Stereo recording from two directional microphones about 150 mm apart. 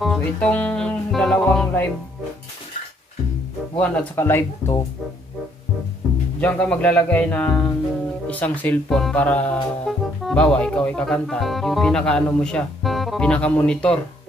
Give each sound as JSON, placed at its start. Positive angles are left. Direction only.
{"t": 0.2, "sound": "music", "side_deg": 10}
{"t": 3.8, "sound": "speech", "side_deg": 10}
{"t": 6.4, "sound": "speech", "side_deg": 10}